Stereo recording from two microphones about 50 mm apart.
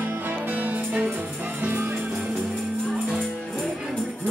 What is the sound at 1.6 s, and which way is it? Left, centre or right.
Music, right.